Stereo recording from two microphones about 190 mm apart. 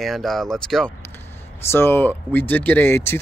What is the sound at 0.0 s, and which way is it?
Speech, centre (ahead or behind).